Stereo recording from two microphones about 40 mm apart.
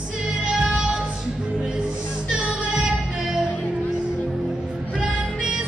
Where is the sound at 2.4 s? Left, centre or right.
Right.